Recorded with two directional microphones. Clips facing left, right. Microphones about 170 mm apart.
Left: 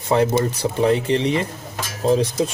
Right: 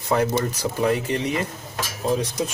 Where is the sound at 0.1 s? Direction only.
25° left (ahead or behind).